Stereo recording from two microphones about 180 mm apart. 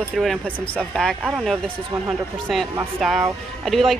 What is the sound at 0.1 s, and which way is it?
A woman's voice, centre (ahead or behind).